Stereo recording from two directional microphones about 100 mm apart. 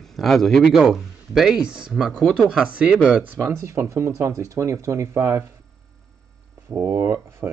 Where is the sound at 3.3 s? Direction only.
30° right (ahead or behind).